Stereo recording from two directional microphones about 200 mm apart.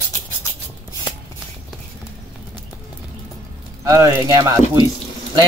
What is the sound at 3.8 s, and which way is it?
Speech, 15° right (ahead or behind).